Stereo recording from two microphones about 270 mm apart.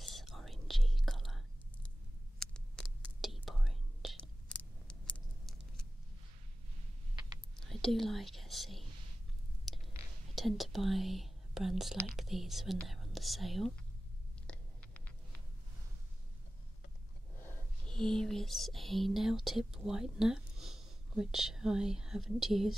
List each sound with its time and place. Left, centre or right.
0.0 s whispering: centre
7.6 s whispering: centre
10.3 s speech: centre
14.4 s a sound: centre
17.4 s whispering: centre